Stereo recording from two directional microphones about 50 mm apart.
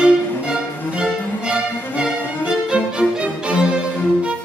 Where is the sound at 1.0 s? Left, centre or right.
Centre.